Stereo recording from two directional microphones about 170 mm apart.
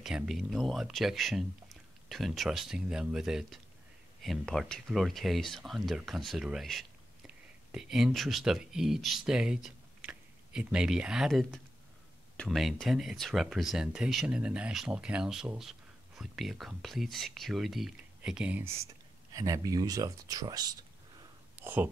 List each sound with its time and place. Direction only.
0.0 s speech: centre (ahead or behind); by 20.7 s 25° right (ahead or behind)
21.5 s whispering: 10° right (ahead or behind)